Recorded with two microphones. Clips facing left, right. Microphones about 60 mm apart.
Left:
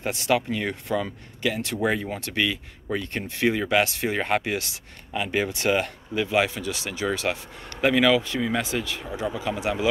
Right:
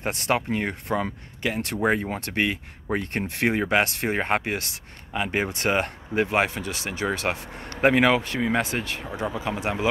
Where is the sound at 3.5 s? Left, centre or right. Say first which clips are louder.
Even; right.